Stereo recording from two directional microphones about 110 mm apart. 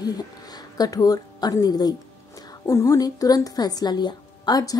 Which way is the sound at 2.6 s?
25° left (ahead or behind).